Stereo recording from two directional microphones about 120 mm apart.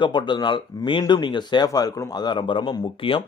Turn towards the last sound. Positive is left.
turn(degrees=45)  # may be behind; listen again after turning